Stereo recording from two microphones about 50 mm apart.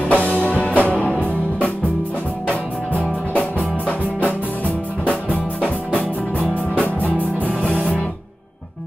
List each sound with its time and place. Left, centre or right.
0.1 s music: left
3.3 s music: left
5.6 s music: left